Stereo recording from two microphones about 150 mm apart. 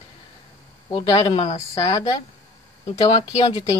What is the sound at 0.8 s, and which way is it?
Speech, 30° left (ahead or behind).